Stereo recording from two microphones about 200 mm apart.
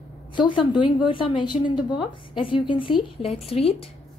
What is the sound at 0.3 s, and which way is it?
A woman's voice, 25° left (ahead or behind).